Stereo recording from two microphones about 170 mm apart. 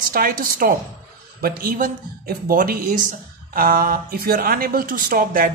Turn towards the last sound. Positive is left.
turn(degrees=-55)  # may be behind; listen again after turning